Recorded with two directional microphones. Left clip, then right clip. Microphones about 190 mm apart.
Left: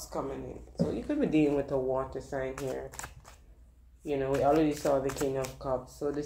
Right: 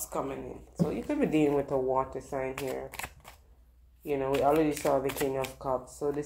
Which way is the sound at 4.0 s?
15° right (ahead or behind).